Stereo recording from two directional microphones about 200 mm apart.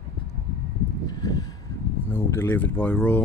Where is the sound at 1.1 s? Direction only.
20° left (ahead or behind).